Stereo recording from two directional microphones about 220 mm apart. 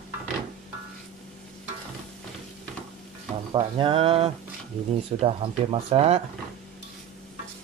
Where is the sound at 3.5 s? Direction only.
25° right (ahead or behind).